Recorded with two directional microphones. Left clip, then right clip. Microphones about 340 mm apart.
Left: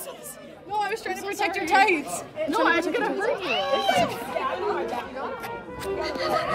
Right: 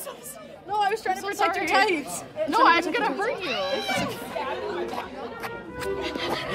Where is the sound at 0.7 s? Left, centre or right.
Centre.